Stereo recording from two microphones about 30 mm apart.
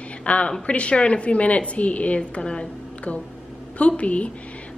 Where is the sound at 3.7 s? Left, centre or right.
Left.